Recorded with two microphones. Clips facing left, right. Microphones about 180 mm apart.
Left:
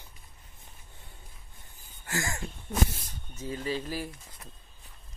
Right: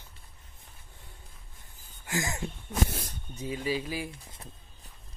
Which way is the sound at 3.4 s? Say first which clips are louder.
Right 1 dB; 10° right (ahead or behind).